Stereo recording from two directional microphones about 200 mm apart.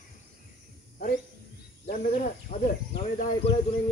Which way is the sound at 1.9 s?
40° left (ahead or behind).